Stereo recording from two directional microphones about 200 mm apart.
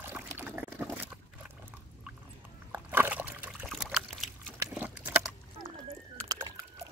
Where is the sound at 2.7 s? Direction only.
10° right (ahead or behind).